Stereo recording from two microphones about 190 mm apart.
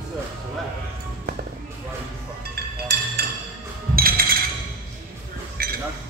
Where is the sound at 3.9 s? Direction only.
50° right (ahead or behind).